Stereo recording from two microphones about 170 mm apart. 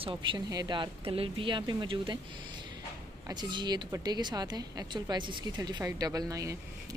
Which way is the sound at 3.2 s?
25° right (ahead or behind).